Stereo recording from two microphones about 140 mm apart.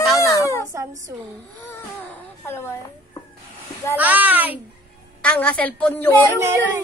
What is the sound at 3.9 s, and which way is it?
Speech, 10° right (ahead or behind).